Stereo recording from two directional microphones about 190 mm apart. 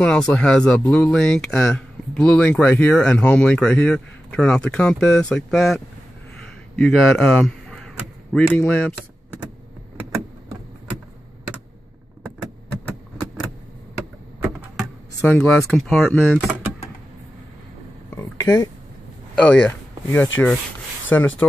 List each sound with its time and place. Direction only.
0.0 s speech: 5° left (ahead or behind)
6.8 s a man's voice: centre (ahead or behind)
9.9 s vehicle: 15° right (ahead or behind)
14.8 s speech: 5° left (ahead or behind)
18.1 s a sound: 15° left (ahead or behind)
19.3 s speech: 5° left (ahead or behind)